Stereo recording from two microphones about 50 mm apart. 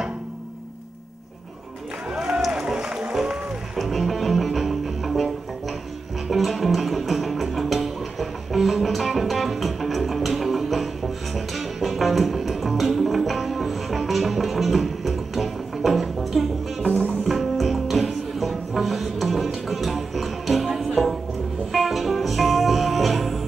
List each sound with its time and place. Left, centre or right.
2.0 s a sound: centre
2.4 s music: centre
16.8 s music: left
17.2 s music: centre